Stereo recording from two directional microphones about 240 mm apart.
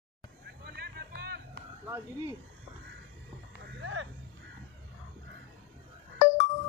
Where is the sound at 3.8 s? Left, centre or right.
Right.